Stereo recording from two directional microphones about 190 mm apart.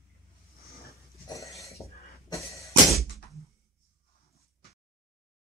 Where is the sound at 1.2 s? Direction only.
15° left (ahead or behind).